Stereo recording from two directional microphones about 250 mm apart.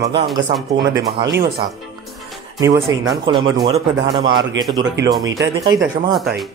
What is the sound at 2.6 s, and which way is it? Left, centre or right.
A man's voice, centre.